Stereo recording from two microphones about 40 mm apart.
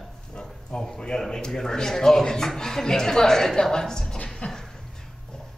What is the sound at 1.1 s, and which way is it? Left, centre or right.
A man's voice, centre.